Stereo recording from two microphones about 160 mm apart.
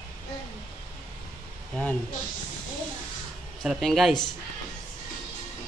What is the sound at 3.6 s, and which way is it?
Speech, centre (ahead or behind).